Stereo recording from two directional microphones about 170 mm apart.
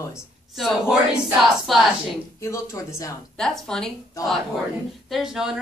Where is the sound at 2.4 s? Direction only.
15° left (ahead or behind).